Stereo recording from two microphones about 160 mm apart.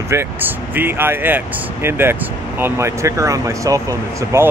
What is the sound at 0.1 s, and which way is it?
Speech, 15° right (ahead or behind).